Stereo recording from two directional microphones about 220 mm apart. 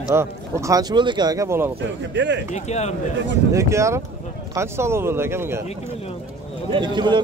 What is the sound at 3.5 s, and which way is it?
Speech, 15° right (ahead or behind).